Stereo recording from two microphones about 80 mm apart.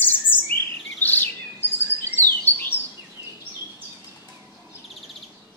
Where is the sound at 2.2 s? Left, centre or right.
Left.